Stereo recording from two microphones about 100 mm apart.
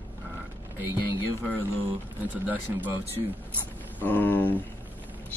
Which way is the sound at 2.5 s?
15° right (ahead or behind).